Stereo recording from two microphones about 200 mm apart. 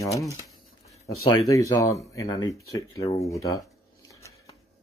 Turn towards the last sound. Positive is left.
turn(degrees=15)  # may be behind; listen again after turning